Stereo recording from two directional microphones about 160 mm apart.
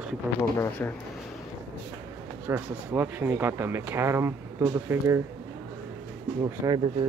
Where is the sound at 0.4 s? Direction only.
15° left (ahead or behind).